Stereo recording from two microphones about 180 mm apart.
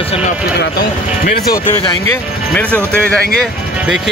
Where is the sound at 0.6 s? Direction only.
55° left (ahead or behind).